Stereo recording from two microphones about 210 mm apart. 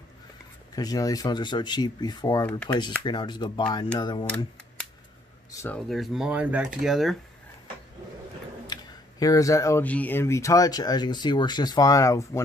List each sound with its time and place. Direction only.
0.7 s speech: 15° left (ahead or behind)
5.5 s speech: 15° left (ahead or behind)
5.8 s speech: centre (ahead or behind)
8.7 s a sound: 20° left (ahead or behind)
9.2 s speech: 15° left (ahead or behind)